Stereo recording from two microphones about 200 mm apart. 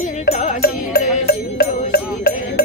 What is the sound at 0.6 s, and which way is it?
Music, 50° left (ahead or behind).